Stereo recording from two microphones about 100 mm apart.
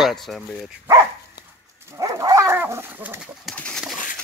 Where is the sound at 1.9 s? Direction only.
35° right (ahead or behind).